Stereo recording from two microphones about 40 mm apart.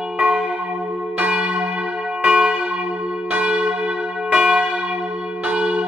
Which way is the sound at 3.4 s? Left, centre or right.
Right.